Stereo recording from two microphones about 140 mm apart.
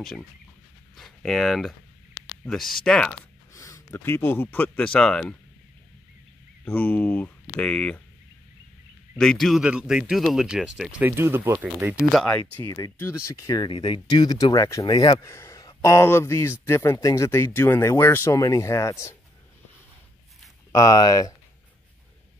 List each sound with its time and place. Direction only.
0.9 s speech: centre (ahead or behind)
3.5 s speech: 20° left (ahead or behind); by 5.3 s 5° left (ahead or behind)
6.6 s speech: 10° left (ahead or behind)
9.2 s speech: centre (ahead or behind)
12.2 s speech: 10° left (ahead or behind)
12.6 s speech: 25° left (ahead or behind)
20.7 s speech: 25° left (ahead or behind)